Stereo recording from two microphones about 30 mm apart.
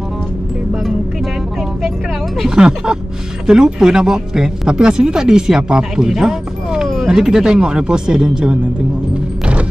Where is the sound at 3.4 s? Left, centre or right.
Right.